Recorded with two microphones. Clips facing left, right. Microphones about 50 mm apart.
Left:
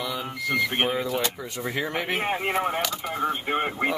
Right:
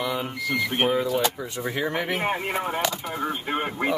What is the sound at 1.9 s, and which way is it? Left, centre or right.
Speech, left.